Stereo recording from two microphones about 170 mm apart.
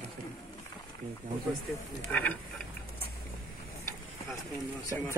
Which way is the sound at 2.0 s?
10° left (ahead or behind).